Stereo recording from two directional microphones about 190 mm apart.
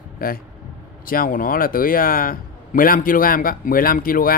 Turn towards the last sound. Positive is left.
turn(degrees=50)  # may be behind; listen again after turning